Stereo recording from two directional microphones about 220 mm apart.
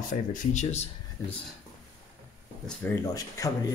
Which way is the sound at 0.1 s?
35° left (ahead or behind).